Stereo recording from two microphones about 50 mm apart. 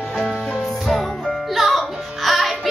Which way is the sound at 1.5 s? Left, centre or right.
Centre.